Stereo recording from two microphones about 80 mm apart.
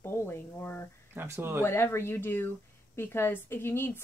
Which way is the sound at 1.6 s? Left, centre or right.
Left.